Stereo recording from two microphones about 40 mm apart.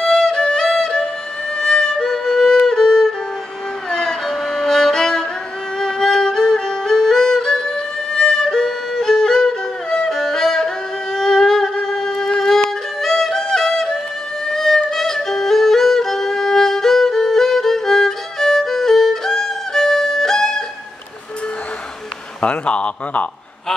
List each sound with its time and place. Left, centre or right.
0.0 s music: centre
2.6 s violin: centre
3.9 s music: centre
5.8 s violin: centre
9.0 s music: centre
22.4 s a sound: left